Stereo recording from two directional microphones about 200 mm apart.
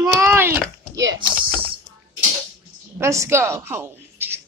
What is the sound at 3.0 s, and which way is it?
A woman's voice, 15° right (ahead or behind).